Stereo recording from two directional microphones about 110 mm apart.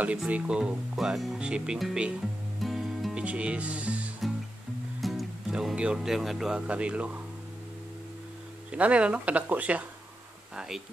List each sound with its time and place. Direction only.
0.0 s speech: 10° right (ahead or behind)
2.6 s music: centre (ahead or behind)
3.3 s speech: 10° right (ahead or behind)
8.7 s speech: 10° right (ahead or behind)